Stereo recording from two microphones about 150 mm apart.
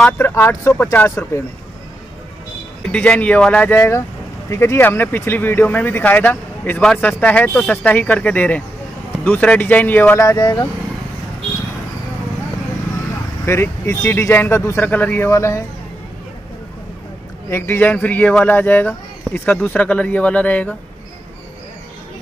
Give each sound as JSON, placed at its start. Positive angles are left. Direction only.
{"t": 0.0, "sound": "speech", "side_deg": 15}
{"t": 2.9, "sound": "speech", "side_deg": 10}
{"t": 13.5, "sound": "speech", "side_deg": 15}
{"t": 17.5, "sound": "speech", "side_deg": 15}